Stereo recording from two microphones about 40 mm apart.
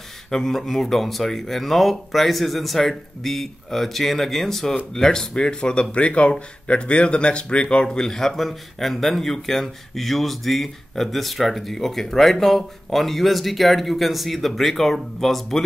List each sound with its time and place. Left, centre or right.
0.3 s speech: centre
8.0 s speech: centre